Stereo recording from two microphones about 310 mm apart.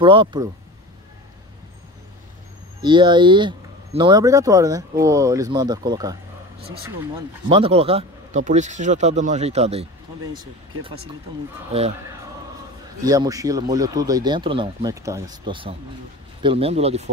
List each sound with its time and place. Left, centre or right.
0.0 s speech: centre
2.8 s speech: centre
7.4 s speech: centre
13.0 s speech: centre